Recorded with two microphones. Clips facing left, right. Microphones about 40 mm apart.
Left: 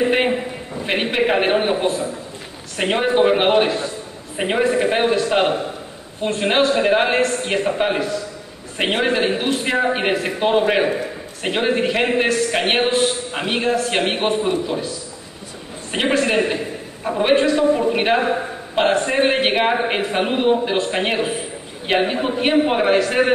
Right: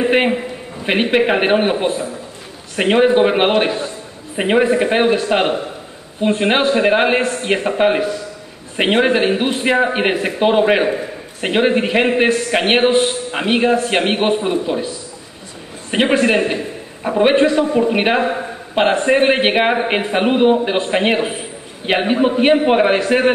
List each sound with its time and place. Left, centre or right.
0.8 s a man's voice: centre
15.9 s a man's voice: right